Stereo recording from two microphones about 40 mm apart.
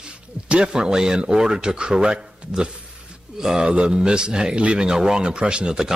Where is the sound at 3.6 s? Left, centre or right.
Right.